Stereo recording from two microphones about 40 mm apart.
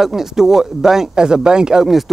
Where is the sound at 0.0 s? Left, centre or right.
Centre.